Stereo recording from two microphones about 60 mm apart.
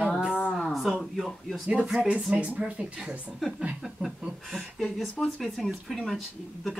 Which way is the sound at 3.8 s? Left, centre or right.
Centre.